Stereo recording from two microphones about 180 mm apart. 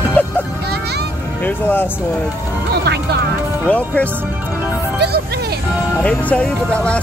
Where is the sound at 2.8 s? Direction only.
65° right (ahead or behind).